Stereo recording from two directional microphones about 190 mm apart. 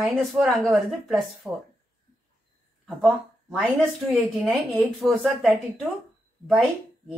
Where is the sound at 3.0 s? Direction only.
Centre (ahead or behind).